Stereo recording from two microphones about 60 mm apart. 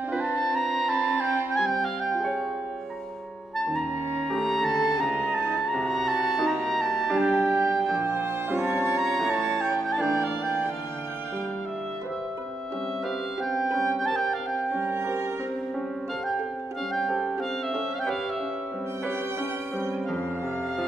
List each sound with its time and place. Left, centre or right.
0.2 s clarinet: centre
4.3 s music: centre
8.0 s music: right
8.9 s music: centre
13.7 s clarinet: centre
14.7 s music: right
16.9 s music: centre